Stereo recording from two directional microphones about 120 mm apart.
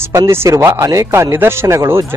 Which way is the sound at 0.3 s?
20° right (ahead or behind).